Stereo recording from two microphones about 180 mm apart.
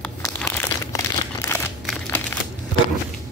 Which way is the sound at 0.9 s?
20° left (ahead or behind).